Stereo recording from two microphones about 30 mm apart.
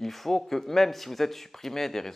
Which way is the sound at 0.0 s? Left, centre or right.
Centre.